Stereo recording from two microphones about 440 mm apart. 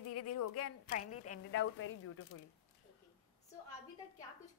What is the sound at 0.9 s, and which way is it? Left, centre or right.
A woman's voice, centre.